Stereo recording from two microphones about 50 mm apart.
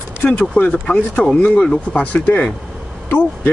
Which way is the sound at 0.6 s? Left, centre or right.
Left.